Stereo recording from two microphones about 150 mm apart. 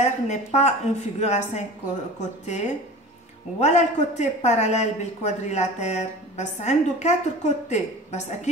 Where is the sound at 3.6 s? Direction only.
50° left (ahead or behind).